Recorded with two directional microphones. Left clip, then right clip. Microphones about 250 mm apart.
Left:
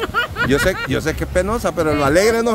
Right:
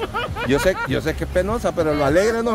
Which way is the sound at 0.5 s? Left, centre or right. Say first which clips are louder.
Right 1 dB; centre.